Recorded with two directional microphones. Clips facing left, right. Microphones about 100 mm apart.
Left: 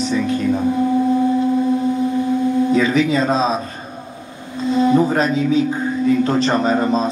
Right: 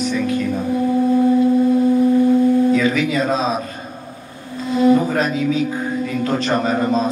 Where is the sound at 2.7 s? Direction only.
25° left (ahead or behind).